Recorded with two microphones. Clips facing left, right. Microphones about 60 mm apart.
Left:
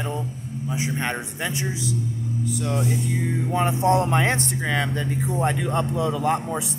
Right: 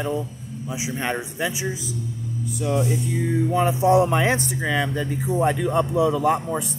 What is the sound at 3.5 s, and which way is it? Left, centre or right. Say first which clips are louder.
Speech: even; centre.